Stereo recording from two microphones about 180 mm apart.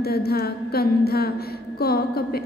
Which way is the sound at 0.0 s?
60° left (ahead or behind).